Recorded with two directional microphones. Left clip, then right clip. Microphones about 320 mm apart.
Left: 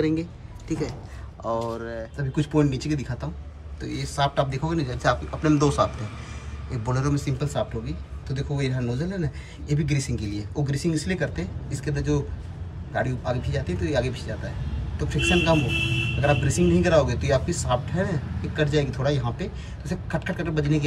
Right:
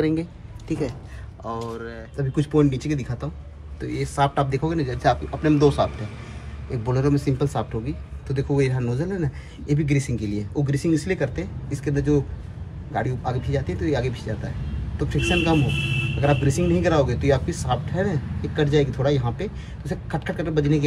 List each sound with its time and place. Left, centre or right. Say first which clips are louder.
0.0 s speech: right 2 dB; centre
6.9 s speech: right 5 dB; centre